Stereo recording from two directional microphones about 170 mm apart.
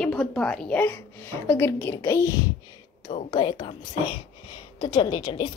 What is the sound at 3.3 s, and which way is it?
Speech, 30° left (ahead or behind).